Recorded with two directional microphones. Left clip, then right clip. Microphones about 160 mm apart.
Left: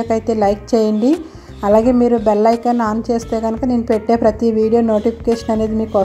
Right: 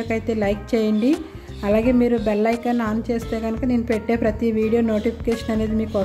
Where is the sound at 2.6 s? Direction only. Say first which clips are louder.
Left 7 dB; 15° right (ahead or behind).